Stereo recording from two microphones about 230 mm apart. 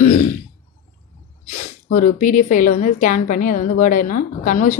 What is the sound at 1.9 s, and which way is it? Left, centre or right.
A woman's voice, left.